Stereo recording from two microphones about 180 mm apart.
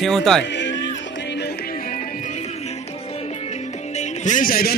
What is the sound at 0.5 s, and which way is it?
Music, 80° left.